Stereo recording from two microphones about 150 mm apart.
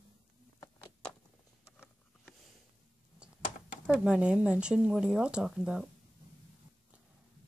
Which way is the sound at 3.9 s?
5° right (ahead or behind).